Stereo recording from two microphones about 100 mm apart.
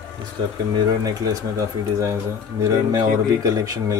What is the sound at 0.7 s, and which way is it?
Speech, 35° right (ahead or behind).